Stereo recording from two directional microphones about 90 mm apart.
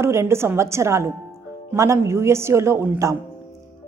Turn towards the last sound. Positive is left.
turn(degrees=-30)  # may be behind; listen again after turning